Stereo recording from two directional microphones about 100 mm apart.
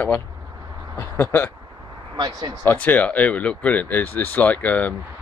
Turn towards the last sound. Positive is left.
turn(degrees=15)  # may be behind; listen again after turning